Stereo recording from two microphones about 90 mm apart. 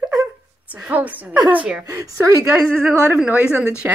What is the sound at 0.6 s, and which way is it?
A woman's voice, 15° right (ahead or behind).